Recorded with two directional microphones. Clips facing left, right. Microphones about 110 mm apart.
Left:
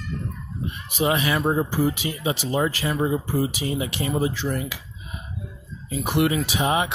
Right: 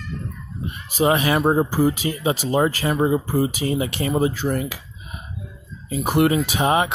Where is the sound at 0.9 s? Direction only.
40° right (ahead or behind).